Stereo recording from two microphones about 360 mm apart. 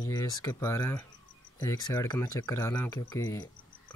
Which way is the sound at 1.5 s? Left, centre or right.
Centre.